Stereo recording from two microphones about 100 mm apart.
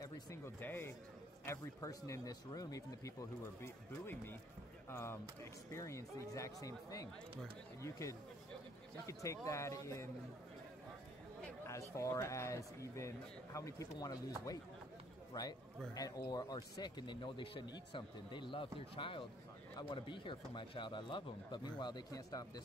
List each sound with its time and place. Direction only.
0.6 s speech: 20° left (ahead or behind)
11.9 s speech: 30° left (ahead or behind)